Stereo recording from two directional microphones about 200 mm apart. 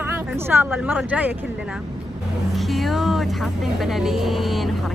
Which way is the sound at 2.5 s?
Centre (ahead or behind).